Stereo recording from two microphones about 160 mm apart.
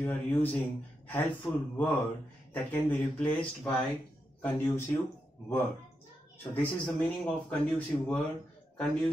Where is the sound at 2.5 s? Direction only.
10° left (ahead or behind).